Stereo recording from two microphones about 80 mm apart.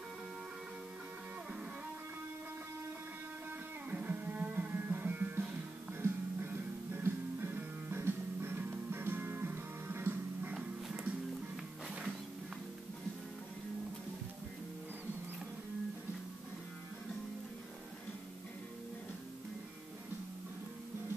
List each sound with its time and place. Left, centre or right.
3.9 s music: right
10.5 s music: centre